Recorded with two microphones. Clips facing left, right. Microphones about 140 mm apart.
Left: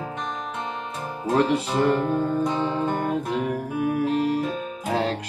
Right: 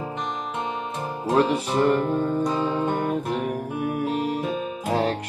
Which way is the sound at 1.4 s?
20° right (ahead or behind).